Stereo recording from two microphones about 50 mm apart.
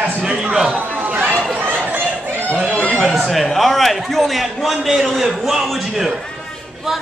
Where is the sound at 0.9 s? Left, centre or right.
Right.